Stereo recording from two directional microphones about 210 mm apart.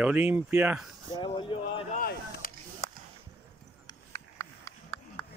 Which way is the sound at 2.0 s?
40° left (ahead or behind).